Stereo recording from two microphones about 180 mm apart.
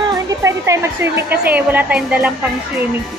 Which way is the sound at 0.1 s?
15° right (ahead or behind).